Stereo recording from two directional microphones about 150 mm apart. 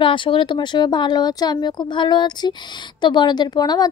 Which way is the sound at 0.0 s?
35° left (ahead or behind).